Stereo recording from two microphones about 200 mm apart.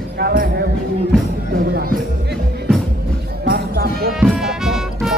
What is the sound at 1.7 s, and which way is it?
Music, 50° right (ahead or behind).